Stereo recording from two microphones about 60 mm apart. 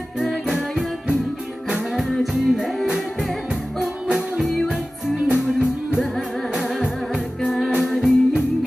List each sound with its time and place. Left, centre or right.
0.5 s music: centre
2.5 s music: centre
5.1 s music: centre
5.9 s music: centre